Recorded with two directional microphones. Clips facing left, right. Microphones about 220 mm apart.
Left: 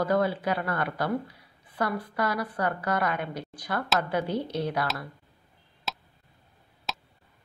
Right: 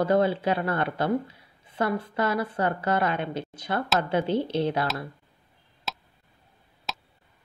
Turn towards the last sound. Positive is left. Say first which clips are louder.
# even
turn(degrees=0)  # may be behind; listen again after turning